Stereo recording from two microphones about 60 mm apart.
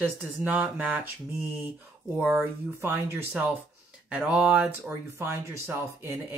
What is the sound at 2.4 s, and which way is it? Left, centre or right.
Speech, right.